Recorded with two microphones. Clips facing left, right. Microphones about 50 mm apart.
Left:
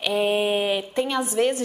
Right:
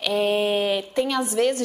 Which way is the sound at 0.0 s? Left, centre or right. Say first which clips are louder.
Even; centre.